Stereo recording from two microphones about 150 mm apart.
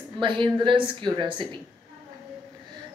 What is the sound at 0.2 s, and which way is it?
A woman's voice, 30° right (ahead or behind).